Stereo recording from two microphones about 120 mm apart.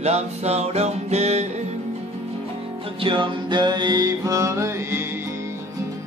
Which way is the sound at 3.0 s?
45° right (ahead or behind).